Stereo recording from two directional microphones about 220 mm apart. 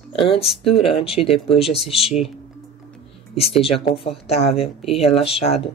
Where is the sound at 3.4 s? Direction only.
25° left (ahead or behind).